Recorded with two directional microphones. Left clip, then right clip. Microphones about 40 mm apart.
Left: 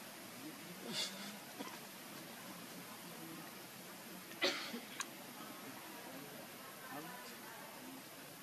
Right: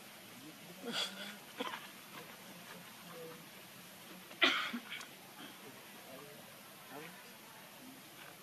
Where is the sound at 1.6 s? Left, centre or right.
Right.